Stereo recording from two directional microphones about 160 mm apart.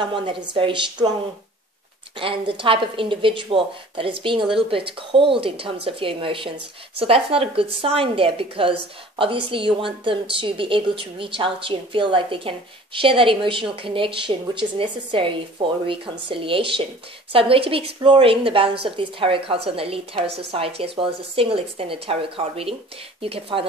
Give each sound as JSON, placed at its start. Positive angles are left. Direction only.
{"t": 0.0, "sound": "a woman's voice", "side_deg": -30}
{"t": 2.1, "sound": "a woman's voice", "side_deg": -35}